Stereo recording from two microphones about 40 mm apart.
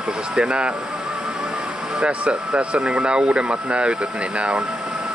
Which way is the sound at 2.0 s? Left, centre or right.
Right.